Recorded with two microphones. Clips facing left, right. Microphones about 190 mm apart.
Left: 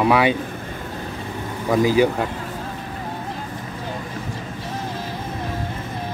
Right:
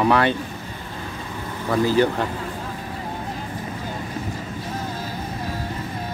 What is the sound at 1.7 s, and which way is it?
Speech, 10° left (ahead or behind).